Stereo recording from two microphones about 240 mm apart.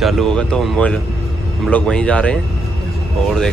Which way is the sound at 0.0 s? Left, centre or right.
Centre.